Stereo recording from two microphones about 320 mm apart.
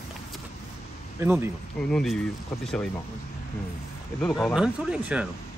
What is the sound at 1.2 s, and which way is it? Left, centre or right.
Speech, centre.